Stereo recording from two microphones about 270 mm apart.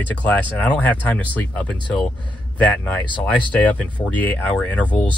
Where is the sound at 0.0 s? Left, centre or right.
Centre.